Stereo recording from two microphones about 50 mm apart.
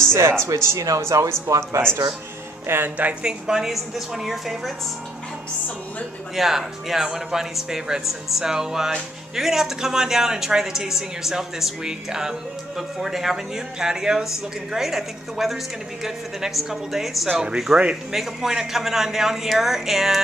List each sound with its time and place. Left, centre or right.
0.0 s speech: right
2.6 s music: right
3.2 s speech: centre
6.3 s speech: centre